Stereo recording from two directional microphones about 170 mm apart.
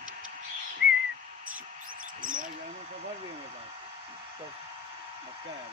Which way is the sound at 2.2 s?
50° right (ahead or behind).